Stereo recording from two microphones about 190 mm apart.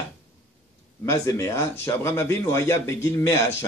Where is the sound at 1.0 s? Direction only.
15° left (ahead or behind).